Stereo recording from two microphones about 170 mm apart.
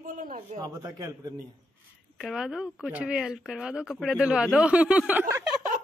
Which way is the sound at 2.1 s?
5° right (ahead or behind).